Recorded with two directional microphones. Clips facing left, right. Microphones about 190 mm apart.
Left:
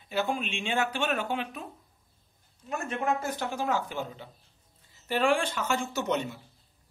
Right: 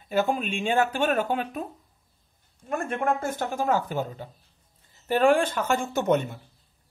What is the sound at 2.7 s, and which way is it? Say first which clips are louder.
Speech: right 4 dB; 50° right (ahead or behind).